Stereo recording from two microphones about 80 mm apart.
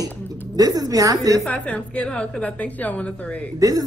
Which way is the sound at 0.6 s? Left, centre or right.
Right.